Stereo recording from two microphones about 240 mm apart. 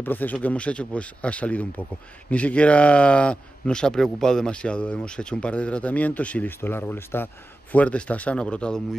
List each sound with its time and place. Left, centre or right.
0.0 s a man's voice: centre